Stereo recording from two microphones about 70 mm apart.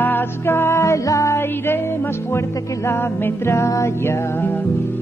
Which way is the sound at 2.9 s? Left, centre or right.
Left.